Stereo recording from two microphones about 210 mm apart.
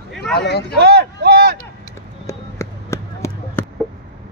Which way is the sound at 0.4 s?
50° left (ahead or behind).